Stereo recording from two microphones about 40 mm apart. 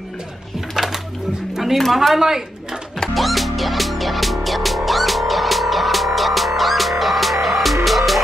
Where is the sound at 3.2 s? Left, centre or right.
Centre.